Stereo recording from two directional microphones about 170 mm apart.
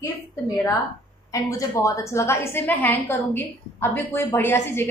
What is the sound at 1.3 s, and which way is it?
A woman's voice, 20° left (ahead or behind).